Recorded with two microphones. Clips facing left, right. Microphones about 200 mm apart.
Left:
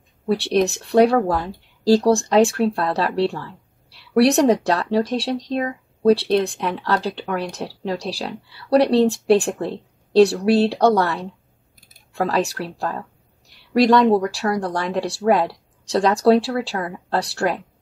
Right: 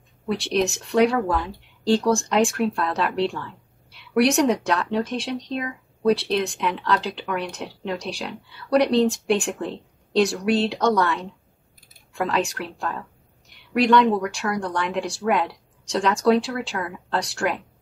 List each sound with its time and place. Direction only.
0.8 s speech: 35° left (ahead or behind)